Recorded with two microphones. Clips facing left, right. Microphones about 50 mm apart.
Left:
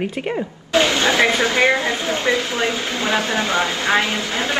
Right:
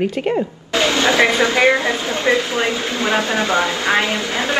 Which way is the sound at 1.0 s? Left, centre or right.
Right.